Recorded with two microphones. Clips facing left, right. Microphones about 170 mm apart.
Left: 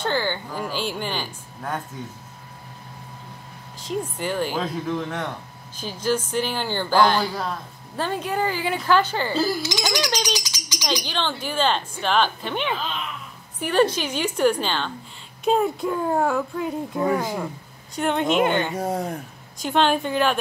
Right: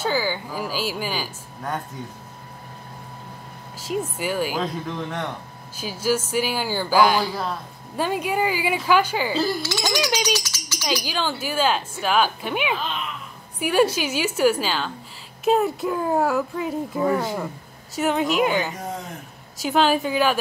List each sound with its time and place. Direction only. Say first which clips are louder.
0.0 s a woman's voice: right 1 dB; 5° right (ahead or behind)
3.8 s speech: right 1 dB; 5° right (ahead or behind)
9.6 s speech: even; 15° left (ahead or behind)
10.3 s a sound: right 2 dB; 15° left (ahead or behind)
10.9 s a woman's voice: right 1 dB; 10° right (ahead or behind)
17.1 s speech: even; 10° left (ahead or behind)
17.9 s a woman's voice: even; 5° right (ahead or behind)
18.8 s speech: left 6 dB; 40° left (ahead or behind)
19.6 s a woman's voice: right 1 dB; 5° right (ahead or behind)